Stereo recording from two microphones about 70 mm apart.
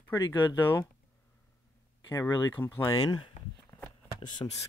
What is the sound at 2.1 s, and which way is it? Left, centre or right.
Speech, left.